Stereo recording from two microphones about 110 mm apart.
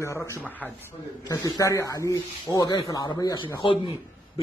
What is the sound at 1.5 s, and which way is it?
A man's voice, 30° left (ahead or behind).